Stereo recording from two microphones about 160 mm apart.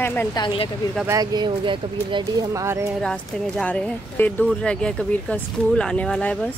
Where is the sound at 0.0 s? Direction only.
10° left (ahead or behind).